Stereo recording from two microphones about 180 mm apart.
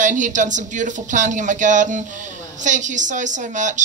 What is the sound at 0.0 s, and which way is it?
Speech, 45° right (ahead or behind).